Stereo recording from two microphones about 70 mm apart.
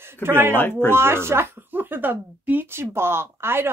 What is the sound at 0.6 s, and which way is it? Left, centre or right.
Speech, left.